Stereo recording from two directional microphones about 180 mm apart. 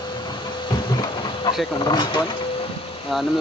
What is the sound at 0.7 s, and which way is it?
Train, 25° left (ahead or behind).